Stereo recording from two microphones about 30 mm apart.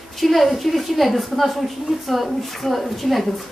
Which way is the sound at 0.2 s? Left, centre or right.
Centre.